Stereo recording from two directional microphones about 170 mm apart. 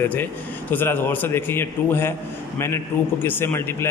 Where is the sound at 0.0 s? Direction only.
10° left (ahead or behind).